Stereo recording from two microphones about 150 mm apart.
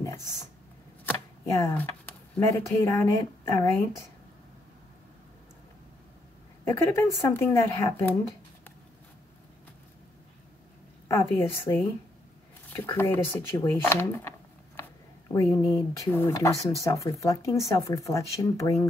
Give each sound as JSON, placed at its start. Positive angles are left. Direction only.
{"t": 0.0, "sound": "a sound", "side_deg": 20}
{"t": 1.0, "sound": "chopping", "side_deg": 20}
{"t": 2.4, "sound": "speech", "side_deg": 20}
{"t": 6.7, "sound": "speech", "side_deg": 15}
{"t": 11.1, "sound": "speech", "side_deg": 20}
{"t": 15.3, "sound": "speech", "side_deg": 20}